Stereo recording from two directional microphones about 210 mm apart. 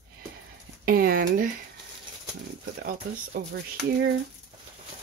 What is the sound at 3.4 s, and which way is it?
Speech, 45° right (ahead or behind).